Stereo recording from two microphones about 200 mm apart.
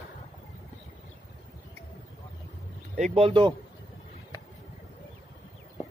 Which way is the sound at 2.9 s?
35° right (ahead or behind).